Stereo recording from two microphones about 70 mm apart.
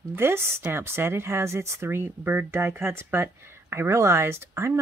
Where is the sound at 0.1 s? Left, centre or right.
Right.